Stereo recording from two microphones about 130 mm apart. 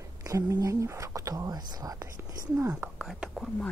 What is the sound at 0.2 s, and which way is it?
Speech, 25° right (ahead or behind).